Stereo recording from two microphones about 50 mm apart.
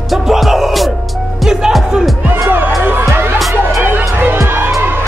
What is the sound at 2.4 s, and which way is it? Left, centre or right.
Music, right.